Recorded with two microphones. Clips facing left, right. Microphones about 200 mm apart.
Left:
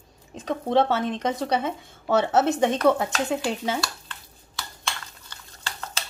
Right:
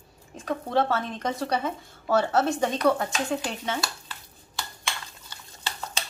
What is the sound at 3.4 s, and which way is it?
Speech, 5° left (ahead or behind).